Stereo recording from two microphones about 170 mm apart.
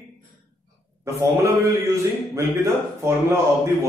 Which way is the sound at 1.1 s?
15° right (ahead or behind).